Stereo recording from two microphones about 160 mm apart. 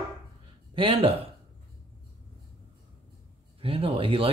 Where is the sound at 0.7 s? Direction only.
35° right (ahead or behind).